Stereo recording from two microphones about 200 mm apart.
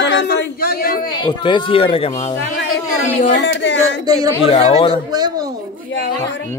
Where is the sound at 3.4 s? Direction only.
65° left (ahead or behind).